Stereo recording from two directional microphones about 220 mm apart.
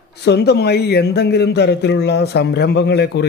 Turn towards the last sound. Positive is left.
turn(degrees=50)  # may be behind; listen again after turning